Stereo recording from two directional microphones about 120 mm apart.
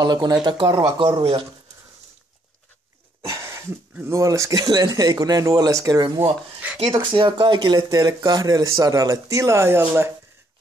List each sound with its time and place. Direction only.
0.0 s speech: 35° right (ahead or behind)
3.3 s a sound: 25° right (ahead or behind)
3.9 s speech: 20° right (ahead or behind)
6.9 s speech: 40° right (ahead or behind); by 10.1 s 20° right (ahead or behind)